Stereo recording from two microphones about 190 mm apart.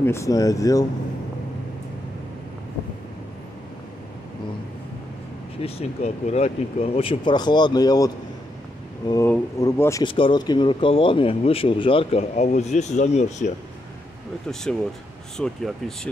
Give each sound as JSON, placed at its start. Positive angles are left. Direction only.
{"t": 0.0, "sound": "speech", "side_deg": 15}
{"t": 5.6, "sound": "speech", "side_deg": 35}
{"t": 9.1, "sound": "speech", "side_deg": 15}
{"t": 10.0, "sound": "speech", "side_deg": 25}
{"t": 14.5, "sound": "speech", "side_deg": 5}